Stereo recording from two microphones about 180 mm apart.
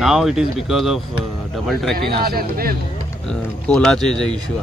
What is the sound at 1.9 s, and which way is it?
Speech, 55° right (ahead or behind).